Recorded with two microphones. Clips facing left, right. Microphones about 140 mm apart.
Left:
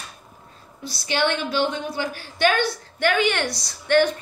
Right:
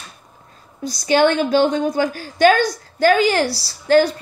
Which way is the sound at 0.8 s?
45° right (ahead or behind).